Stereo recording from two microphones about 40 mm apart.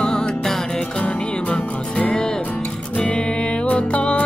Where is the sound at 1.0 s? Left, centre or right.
Left.